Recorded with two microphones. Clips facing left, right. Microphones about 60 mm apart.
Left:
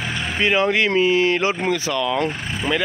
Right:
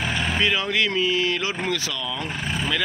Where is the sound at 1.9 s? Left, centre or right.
Left.